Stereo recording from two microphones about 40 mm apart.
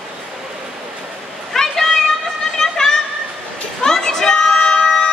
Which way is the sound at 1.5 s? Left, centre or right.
Centre.